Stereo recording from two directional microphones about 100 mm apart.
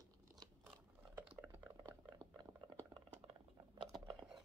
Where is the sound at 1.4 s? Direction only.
30° right (ahead or behind).